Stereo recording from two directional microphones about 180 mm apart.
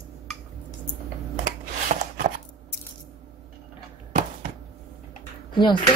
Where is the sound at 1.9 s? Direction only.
40° right (ahead or behind).